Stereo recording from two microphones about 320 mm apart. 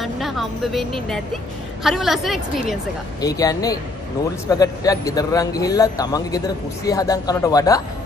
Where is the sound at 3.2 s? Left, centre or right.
Centre.